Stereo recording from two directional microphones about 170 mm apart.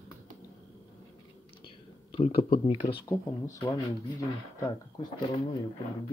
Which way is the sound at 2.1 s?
35° left (ahead or behind).